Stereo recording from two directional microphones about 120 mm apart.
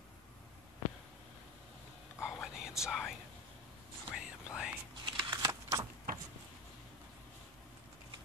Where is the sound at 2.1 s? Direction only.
20° left (ahead or behind).